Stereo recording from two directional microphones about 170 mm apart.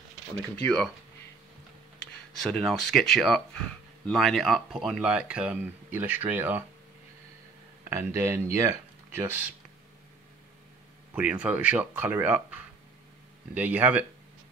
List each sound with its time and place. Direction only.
0.6 s speech: 5° left (ahead or behind)
2.4 s speech: centre (ahead or behind)
7.9 s speech: 15° right (ahead or behind)
11.1 s speech: 10° right (ahead or behind)
13.6 s speech: 10° right (ahead or behind)